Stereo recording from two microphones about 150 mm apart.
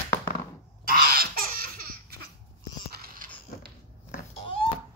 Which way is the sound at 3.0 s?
70° right (ahead or behind).